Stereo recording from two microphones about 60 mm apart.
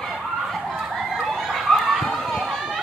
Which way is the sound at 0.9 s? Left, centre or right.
Centre.